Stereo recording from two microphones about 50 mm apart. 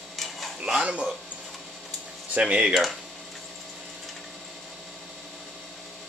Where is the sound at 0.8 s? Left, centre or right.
Centre.